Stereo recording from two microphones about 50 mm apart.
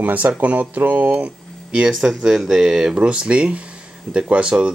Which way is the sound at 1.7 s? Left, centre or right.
Centre.